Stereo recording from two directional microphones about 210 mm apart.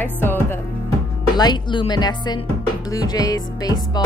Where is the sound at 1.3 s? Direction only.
20° left (ahead or behind).